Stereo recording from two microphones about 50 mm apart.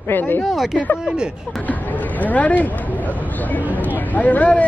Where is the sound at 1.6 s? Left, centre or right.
Left.